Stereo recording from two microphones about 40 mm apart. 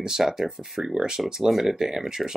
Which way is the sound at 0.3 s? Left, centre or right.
Centre.